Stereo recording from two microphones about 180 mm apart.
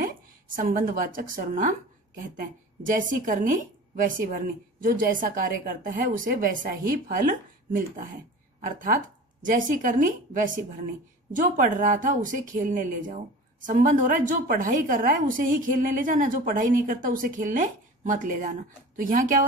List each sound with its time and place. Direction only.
0.6 s speech: 50° right (ahead or behind)